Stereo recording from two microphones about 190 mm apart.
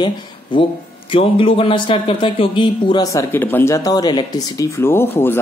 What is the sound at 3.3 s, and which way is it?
A man's voice, 10° left (ahead or behind).